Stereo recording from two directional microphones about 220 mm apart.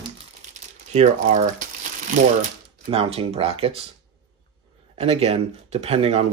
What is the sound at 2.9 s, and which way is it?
Speech, 25° right (ahead or behind).